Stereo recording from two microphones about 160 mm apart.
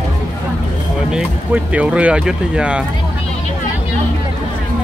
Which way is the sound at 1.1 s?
10° right (ahead or behind).